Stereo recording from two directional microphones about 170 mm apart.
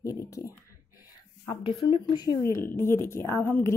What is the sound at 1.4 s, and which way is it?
Speech, 30° left (ahead or behind).